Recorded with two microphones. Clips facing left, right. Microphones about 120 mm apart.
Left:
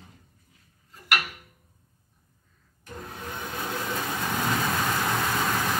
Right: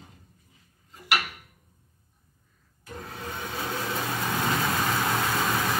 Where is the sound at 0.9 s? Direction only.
20° right (ahead or behind).